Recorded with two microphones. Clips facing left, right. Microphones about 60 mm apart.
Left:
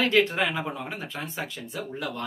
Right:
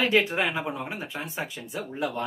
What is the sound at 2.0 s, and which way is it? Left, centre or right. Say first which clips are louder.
Speech: right 5 dB; right.